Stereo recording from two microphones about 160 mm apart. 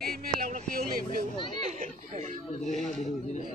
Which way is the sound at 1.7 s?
45° right (ahead or behind).